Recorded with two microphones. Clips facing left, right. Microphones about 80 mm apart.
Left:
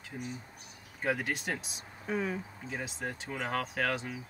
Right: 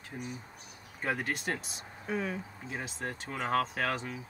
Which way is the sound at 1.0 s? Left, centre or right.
Centre.